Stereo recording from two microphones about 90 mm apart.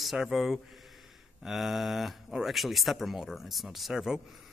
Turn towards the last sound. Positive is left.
turn(degrees=-5)  # may be behind; listen again after turning